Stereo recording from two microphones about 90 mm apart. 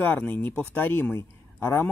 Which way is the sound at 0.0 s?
20° left (ahead or behind).